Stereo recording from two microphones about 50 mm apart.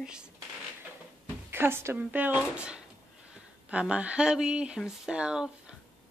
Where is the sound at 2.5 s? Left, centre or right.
Right.